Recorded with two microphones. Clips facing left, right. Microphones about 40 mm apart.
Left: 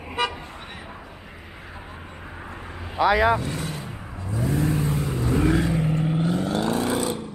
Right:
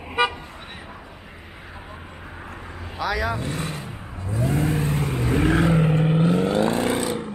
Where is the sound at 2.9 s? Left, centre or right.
Left.